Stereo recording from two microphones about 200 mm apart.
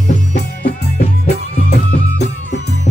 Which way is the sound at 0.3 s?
50° left (ahead or behind).